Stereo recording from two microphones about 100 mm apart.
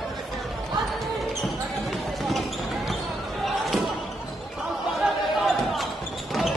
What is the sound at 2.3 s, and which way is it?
Basketball bounce, centre (ahead or behind).